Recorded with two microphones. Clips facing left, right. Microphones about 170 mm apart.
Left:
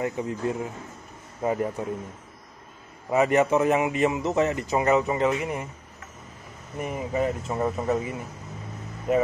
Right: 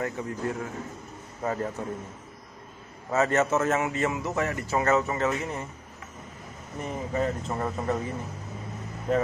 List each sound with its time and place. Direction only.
0.0 s a man's voice: 20° left (ahead or behind)
3.1 s a man's voice: 15° left (ahead or behind)
6.8 s a man's voice: 10° left (ahead or behind)